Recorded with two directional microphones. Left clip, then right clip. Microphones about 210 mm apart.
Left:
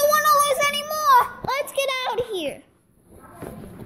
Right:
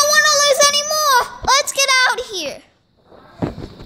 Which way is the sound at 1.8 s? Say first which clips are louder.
Right 11 dB; 90° right.